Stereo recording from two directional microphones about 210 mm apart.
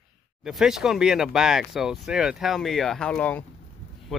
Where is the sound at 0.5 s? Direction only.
Centre (ahead or behind).